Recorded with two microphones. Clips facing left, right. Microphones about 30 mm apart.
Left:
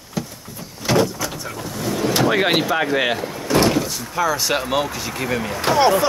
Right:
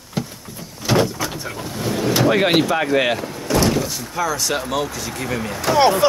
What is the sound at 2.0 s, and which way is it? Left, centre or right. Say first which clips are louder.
Speech: right 1 dB; centre.